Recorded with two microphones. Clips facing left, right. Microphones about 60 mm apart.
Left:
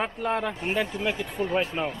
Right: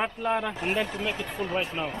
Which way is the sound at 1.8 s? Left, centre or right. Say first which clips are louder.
Left 3 dB; centre.